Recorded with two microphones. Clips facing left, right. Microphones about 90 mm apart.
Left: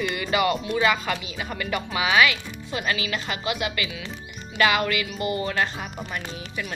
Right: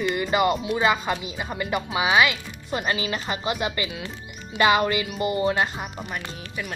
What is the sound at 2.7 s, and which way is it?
A woman's voice, 30° right (ahead or behind).